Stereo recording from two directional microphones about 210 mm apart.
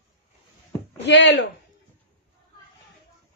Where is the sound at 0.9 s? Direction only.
55° left (ahead or behind).